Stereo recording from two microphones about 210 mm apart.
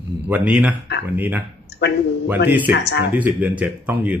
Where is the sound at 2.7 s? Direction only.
55° left (ahead or behind).